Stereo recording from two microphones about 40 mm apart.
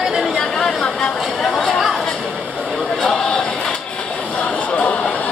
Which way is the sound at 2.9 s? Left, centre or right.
Centre.